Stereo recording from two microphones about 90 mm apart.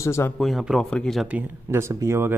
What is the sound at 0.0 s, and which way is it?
Speech, 30° left (ahead or behind).